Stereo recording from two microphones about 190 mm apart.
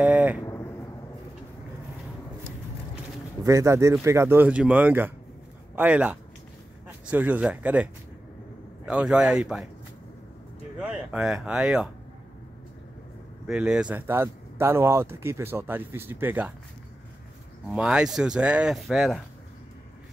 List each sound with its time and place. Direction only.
0.0 s vehicle: 10° right (ahead or behind)
0.5 s a sound: 15° left (ahead or behind)
3.4 s speech: 15° right (ahead or behind)
10.8 s speech: 5° right (ahead or behind)
13.5 s speech: 5° right (ahead or behind)
17.7 s speech: 5° right (ahead or behind)